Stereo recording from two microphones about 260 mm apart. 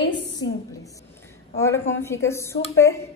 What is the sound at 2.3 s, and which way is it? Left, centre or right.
Speech, centre.